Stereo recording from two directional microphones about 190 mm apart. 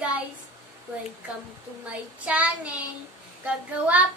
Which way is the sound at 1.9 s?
5° right (ahead or behind).